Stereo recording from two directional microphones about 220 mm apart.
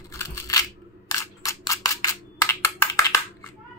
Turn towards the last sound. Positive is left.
turn(degrees=10)  # may be behind; listen again after turning